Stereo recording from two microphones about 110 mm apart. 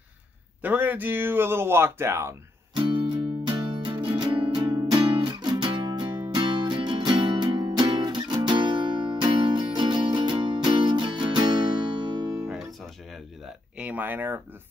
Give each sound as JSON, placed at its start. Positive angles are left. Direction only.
{"t": 0.6, "sound": "speech", "side_deg": -15}
{"t": 2.7, "sound": "music", "side_deg": -50}
{"t": 13.7, "sound": "speech", "side_deg": -15}